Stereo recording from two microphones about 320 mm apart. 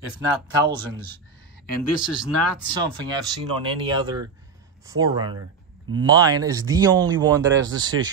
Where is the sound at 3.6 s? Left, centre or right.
Centre.